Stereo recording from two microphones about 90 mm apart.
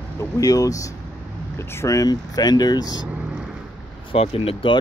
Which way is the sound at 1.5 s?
30° left (ahead or behind).